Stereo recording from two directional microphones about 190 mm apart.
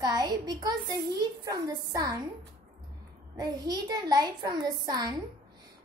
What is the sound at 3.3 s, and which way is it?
A woman's voice, 20° right (ahead or behind).